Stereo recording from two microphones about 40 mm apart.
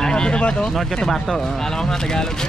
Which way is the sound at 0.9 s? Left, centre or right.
Centre.